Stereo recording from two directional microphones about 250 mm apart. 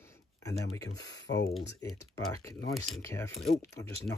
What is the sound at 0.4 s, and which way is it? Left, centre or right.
Speech, centre.